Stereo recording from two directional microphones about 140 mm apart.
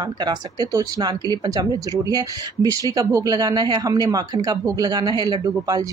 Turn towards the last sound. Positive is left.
turn(degrees=-30)  # may be behind; listen again after turning